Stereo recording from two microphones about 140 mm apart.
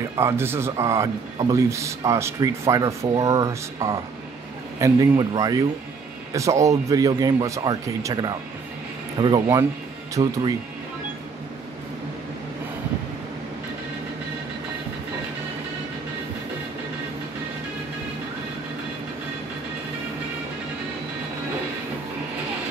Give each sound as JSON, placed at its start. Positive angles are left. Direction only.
{"t": 0.2, "sound": "speech", "side_deg": -15}